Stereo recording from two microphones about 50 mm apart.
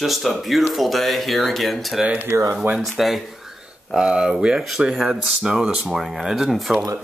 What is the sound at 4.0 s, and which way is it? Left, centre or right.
Speech, centre.